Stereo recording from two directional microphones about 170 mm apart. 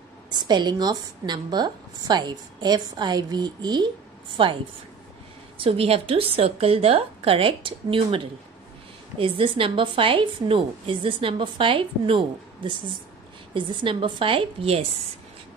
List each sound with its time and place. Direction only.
0.4 s a woman's voice: 25° right (ahead or behind)
5.6 s a woman's voice: 35° right (ahead or behind)